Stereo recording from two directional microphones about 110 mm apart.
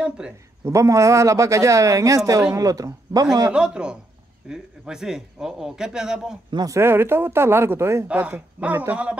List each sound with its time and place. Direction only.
0.7 s speech: 30° right (ahead or behind)
3.5 s a man's voice: 10° right (ahead or behind)
6.5 s speech: 35° right (ahead or behind)
6.8 s speech: 20° right (ahead or behind)
8.1 s speech: 15° right (ahead or behind)